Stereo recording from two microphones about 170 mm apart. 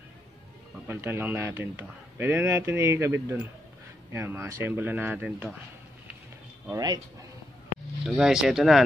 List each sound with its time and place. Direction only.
0.8 s a man's voice: 10° right (ahead or behind)
6.7 s speech: 25° right (ahead or behind)
8.0 s speech: centre (ahead or behind)